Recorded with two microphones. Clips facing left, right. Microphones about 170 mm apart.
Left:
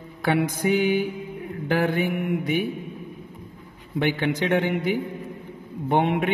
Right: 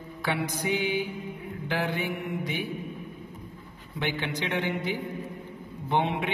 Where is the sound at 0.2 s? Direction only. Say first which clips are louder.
Left 7 dB; 50° left (ahead or behind).